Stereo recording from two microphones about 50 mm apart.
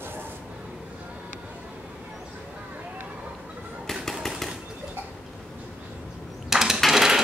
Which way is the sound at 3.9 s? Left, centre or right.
Centre.